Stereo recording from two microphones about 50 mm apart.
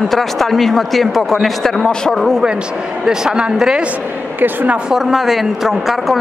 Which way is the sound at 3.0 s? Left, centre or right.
Centre.